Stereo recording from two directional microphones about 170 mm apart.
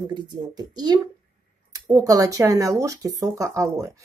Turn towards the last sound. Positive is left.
turn(degrees=-20)  # may be behind; listen again after turning